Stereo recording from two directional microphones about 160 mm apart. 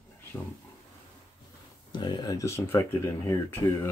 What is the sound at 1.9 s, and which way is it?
Speech, 30° left (ahead or behind).